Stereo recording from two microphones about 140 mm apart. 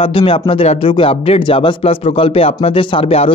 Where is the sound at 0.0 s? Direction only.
40° left (ahead or behind).